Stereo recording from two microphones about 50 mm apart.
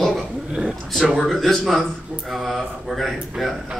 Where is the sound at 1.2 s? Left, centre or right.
Centre.